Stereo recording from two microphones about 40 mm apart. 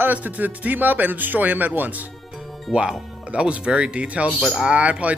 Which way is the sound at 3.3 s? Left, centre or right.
Right.